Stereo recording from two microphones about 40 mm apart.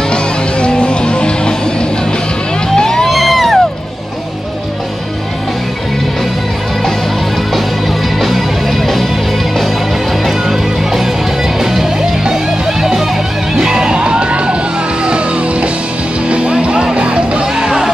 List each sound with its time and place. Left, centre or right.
0.1 s music: left
2.7 s vehicle: centre
3.1 s music: centre
8.2 s music: centre
10.2 s music: centre
13.6 s music: centre